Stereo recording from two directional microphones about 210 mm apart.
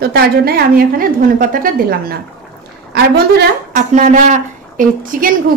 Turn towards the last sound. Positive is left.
turn(degrees=-40)  # may be behind; listen again after turning